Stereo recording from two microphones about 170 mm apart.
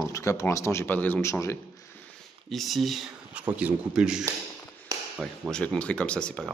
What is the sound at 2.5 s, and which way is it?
Speech, centre (ahead or behind).